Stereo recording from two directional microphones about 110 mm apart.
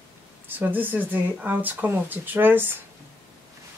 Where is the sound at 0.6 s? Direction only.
15° right (ahead or behind).